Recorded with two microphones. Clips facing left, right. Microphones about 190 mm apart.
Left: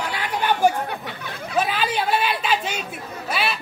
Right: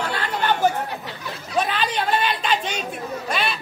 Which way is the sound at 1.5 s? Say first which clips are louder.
Even; 5° left (ahead or behind).